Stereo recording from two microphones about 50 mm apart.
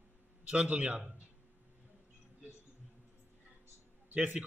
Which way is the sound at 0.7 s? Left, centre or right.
Right.